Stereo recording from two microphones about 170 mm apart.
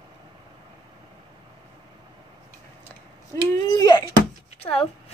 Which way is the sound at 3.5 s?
20° left (ahead or behind).